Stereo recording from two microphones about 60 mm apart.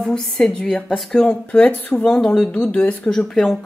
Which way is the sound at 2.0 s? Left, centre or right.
Centre.